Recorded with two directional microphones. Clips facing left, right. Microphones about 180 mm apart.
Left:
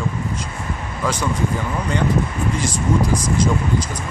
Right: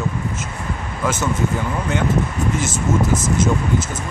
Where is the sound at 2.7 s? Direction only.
25° right (ahead or behind).